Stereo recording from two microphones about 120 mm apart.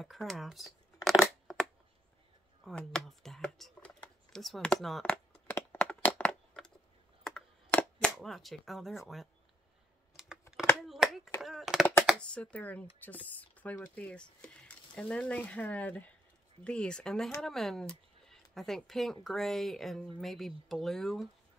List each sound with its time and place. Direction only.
0.0 s speech: centre (ahead or behind)
2.7 s speech: 5° left (ahead or behind)
5.1 s a sound: 15° left (ahead or behind)
7.2 s camera: 5° left (ahead or behind)
10.1 s computer keyboard: 5° right (ahead or behind)
10.8 s a sound: centre (ahead or behind)
12.2 s speech: 10° left (ahead or behind)